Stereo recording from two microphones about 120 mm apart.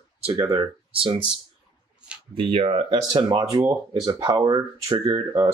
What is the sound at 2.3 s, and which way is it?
Speech, 50° right (ahead or behind).